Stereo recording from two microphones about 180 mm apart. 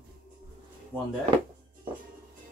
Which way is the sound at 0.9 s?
10° right (ahead or behind).